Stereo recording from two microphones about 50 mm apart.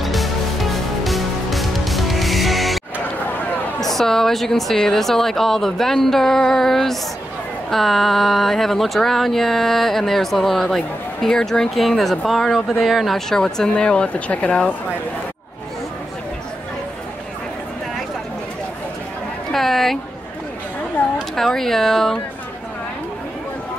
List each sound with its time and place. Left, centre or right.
0.0 s music: centre
3.8 s a woman's voice: centre
13.3 s speech: centre
19.5 s a sound: centre
21.0 s a sound: left
21.4 s a woman's voice: centre